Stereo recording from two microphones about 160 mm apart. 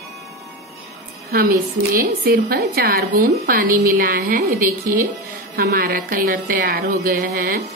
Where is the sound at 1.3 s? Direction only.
65° right (ahead or behind).